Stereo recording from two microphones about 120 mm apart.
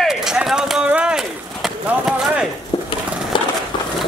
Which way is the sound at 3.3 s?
45° left (ahead or behind).